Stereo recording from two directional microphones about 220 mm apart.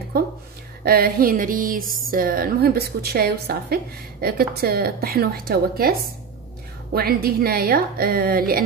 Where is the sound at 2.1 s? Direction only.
40° right (ahead or behind).